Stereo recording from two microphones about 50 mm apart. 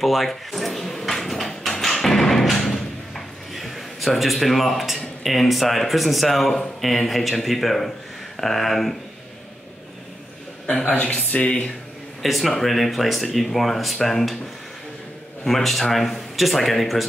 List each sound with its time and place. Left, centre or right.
0.0 s a sound: centre
8.4 s speech: centre
10.7 s speech: left
12.2 s speech: centre
15.4 s speech: centre